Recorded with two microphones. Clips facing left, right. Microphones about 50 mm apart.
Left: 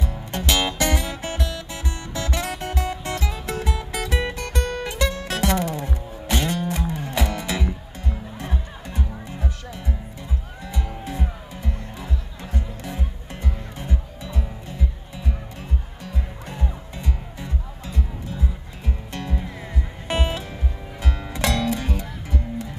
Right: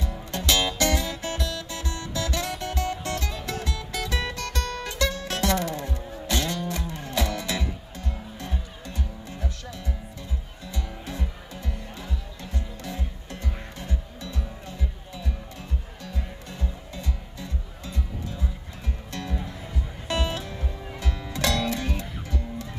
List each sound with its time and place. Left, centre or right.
0.3 s music: left
16.0 s music: left
19.1 s music: left